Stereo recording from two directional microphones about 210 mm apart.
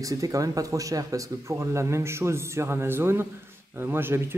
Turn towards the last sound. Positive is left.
turn(degrees=-10)  # may be behind; listen again after turning